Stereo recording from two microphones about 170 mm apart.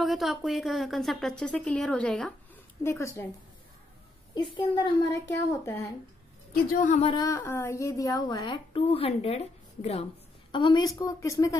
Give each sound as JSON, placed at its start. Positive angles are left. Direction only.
{"t": 0.0, "sound": "speech", "side_deg": 0}
{"t": 2.8, "sound": "speech", "side_deg": 15}
{"t": 4.4, "sound": "a woman's voice", "side_deg": 25}
{"t": 6.7, "sound": "speech", "side_deg": 50}
{"t": 7.1, "sound": "a woman's voice", "side_deg": 20}
{"t": 10.5, "sound": "a woman's voice", "side_deg": 25}